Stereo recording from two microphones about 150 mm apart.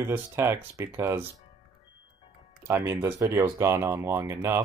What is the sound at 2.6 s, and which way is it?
Speech, 20° right (ahead or behind).